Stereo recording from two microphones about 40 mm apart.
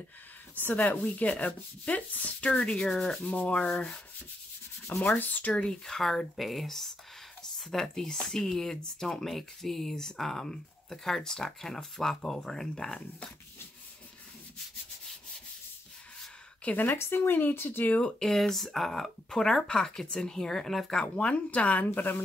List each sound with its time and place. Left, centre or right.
0.6 s speech: left
0.9 s speech: left
2.7 s speech: centre
3.2 s speech: left
5.0 s speech: left
5.5 s speech: centre
16.7 s speech: left
17.8 s speech: left
18.2 s speech: centre
19.3 s speech: centre
21.0 s speech: left
21.8 s speech: left